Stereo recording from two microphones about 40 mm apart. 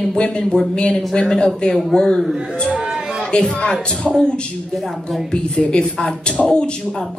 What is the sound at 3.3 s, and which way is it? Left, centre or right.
Speech, left.